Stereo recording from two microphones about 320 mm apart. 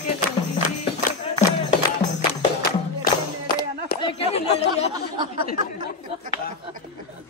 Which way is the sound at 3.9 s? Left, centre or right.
Centre.